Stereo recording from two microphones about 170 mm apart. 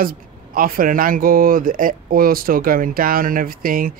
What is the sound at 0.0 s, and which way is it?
Speech, 60° right (ahead or behind).